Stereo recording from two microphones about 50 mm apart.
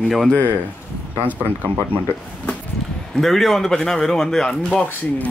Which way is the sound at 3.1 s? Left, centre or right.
Centre.